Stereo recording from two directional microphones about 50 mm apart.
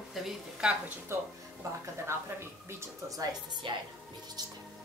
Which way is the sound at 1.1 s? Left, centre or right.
Right.